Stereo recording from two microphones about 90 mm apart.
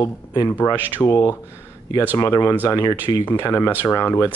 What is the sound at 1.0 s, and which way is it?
Speech, 40° left (ahead or behind).